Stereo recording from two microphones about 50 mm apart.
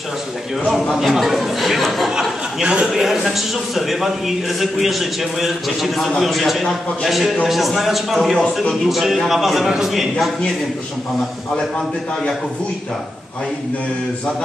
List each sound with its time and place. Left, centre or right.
0.9 s a man's voice: centre
2.1 s speech: centre
2.9 s a man's voice: centre